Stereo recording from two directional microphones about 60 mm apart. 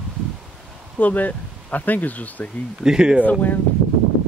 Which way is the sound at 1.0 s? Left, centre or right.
Left.